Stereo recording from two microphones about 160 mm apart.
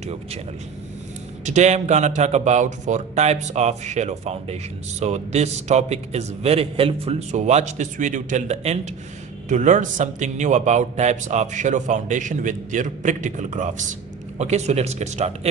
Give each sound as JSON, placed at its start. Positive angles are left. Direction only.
{"t": 0.0, "sound": "speech", "side_deg": -40}
{"t": 1.4, "sound": "speech", "side_deg": -45}